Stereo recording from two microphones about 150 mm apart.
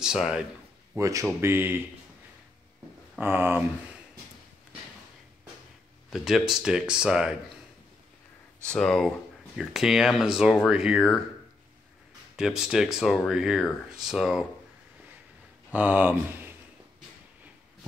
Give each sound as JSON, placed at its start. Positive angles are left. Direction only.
{"t": 0.0, "sound": "speech", "side_deg": -5}
{"t": 0.9, "sound": "speech", "side_deg": -20}
{"t": 3.2, "sound": "speech", "side_deg": -15}
{"t": 6.0, "sound": "speech", "side_deg": 0}
{"t": 8.6, "sound": "speech", "side_deg": 5}
{"t": 12.4, "sound": "speech", "side_deg": -5}
{"t": 15.7, "sound": "speech", "side_deg": -10}